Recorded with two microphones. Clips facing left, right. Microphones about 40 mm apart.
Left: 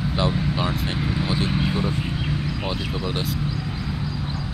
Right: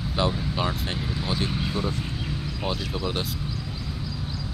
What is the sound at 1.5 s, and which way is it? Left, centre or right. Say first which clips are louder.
Speech: left 4 dB; left.